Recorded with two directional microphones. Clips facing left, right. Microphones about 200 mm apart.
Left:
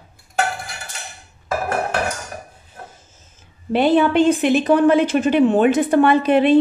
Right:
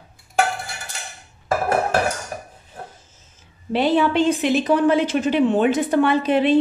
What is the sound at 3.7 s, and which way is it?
A woman's voice, 55° left (ahead or behind).